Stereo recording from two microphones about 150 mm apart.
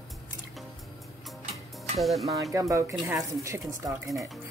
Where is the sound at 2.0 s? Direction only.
Centre (ahead or behind).